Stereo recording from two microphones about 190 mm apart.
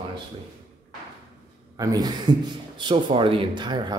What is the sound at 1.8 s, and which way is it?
Speech, 20° right (ahead or behind).